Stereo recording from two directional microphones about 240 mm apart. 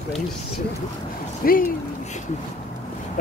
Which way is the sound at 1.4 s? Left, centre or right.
Left.